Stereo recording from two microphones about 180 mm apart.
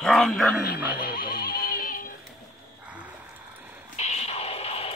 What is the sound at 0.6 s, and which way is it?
Music, 60° left (ahead or behind).